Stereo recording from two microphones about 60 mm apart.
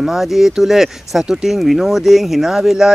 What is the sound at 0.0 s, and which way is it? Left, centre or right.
Speech, centre.